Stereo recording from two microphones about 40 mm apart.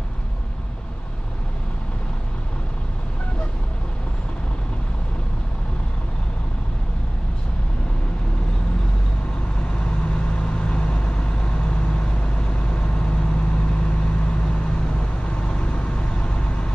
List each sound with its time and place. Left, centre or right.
9.6 s vehicle: left